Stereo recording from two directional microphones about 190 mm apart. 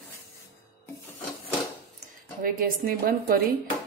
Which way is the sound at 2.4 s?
50° right (ahead or behind).